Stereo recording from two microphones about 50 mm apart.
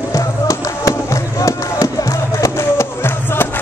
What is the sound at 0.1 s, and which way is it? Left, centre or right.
Music, left.